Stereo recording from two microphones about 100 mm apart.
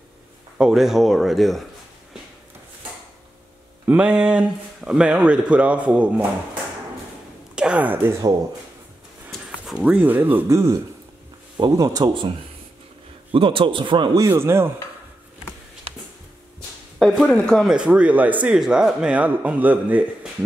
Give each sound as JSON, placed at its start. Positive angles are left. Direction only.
{"t": 0.6, "sound": "speech", "side_deg": -5}
{"t": 3.8, "sound": "speech", "side_deg": -15}
{"t": 7.5, "sound": "speech", "side_deg": -10}
{"t": 9.8, "sound": "speech", "side_deg": -10}
{"t": 10.5, "sound": "speech", "side_deg": -35}
{"t": 13.3, "sound": "speech", "side_deg": -65}
{"t": 14.3, "sound": "cutlery", "side_deg": -25}
{"t": 17.0, "sound": "speech", "side_deg": 5}
{"t": 17.6, "sound": "speech", "side_deg": -10}